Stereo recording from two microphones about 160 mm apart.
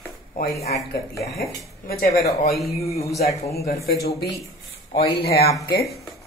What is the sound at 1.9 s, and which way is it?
Speech, 70° left (ahead or behind).